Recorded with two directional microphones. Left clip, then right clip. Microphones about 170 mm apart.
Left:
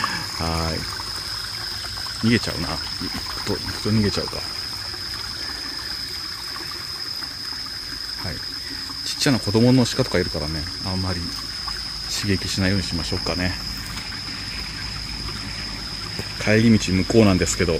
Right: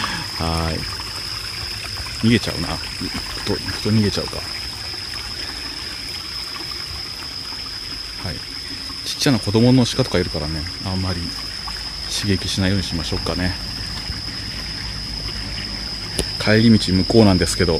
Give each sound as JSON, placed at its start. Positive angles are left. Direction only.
{"t": 0.0, "sound": "pour", "side_deg": -5}
{"t": 2.2, "sound": "speech", "side_deg": -10}
{"t": 9.2, "sound": "speech", "side_deg": 0}
{"t": 16.4, "sound": "speech", "side_deg": 0}